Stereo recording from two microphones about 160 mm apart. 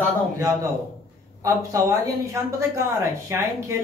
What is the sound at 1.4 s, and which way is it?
Speech, 20° right (ahead or behind).